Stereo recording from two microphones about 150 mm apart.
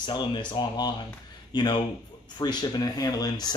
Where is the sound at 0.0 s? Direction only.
30° left (ahead or behind).